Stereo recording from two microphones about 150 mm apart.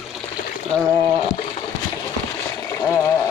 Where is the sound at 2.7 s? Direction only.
20° left (ahead or behind).